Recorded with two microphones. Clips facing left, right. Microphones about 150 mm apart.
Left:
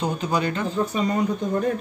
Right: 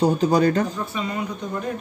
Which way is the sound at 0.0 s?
35° right (ahead or behind).